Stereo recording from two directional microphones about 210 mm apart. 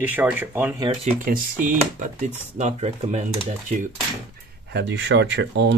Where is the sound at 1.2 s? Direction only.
40° right (ahead or behind).